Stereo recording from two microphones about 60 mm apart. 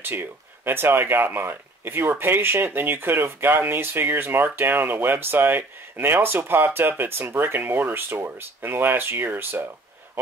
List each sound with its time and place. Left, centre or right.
0.0 s speech: right